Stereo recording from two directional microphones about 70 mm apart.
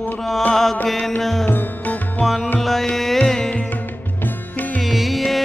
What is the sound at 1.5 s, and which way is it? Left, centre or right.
Music, left.